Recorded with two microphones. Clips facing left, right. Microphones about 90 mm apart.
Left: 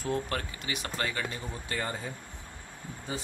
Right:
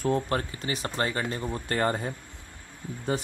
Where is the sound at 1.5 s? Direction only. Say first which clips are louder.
Right 12 dB; 50° right (ahead or behind).